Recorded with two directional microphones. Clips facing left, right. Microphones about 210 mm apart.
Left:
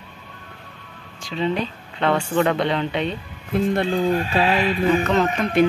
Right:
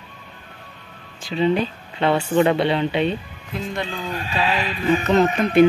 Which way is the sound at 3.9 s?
45° left (ahead or behind).